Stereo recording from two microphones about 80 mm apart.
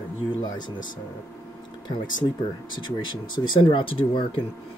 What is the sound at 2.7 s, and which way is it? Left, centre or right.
Speech, left.